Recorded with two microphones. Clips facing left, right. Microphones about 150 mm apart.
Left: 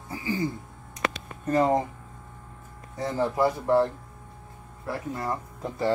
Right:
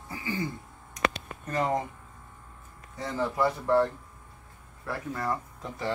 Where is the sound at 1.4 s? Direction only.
30° left (ahead or behind).